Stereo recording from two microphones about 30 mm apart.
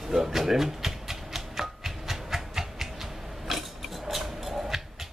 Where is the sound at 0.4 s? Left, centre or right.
Centre.